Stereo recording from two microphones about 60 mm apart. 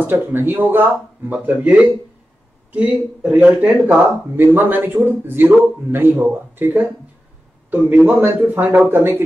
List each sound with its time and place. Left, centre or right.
0.0 s a man's voice: right